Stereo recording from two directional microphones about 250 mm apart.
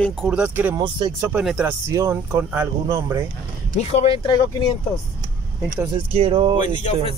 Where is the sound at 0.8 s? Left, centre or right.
Centre.